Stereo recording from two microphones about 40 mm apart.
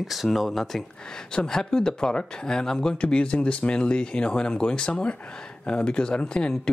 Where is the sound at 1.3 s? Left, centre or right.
Centre.